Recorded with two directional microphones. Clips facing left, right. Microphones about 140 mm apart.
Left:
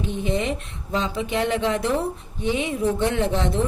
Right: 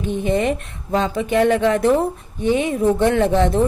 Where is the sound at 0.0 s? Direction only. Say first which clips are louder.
Right 5 dB; 55° right (ahead or behind).